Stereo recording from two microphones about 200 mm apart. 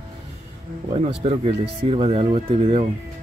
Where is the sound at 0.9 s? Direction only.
30° right (ahead or behind).